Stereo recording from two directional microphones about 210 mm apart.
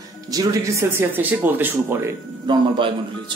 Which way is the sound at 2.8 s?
25° right (ahead or behind).